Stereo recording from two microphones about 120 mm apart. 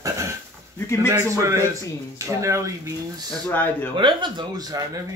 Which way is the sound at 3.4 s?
15° left (ahead or behind).